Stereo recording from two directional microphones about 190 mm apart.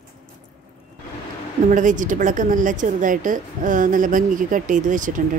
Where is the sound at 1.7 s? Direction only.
40° right (ahead or behind).